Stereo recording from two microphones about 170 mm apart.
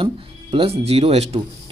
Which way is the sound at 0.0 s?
30° right (ahead or behind).